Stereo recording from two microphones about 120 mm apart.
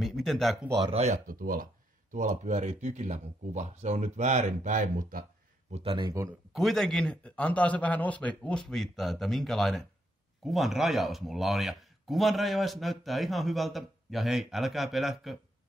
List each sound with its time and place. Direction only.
0.0 s speech: 5° left (ahead or behind)
0.8 s speech: 65° right (ahead or behind)
2.0 s speech: 90° right
5.7 s speech: 60° right (ahead or behind)
6.2 s speech: 25° right (ahead or behind)
6.5 s speech: centre (ahead or behind)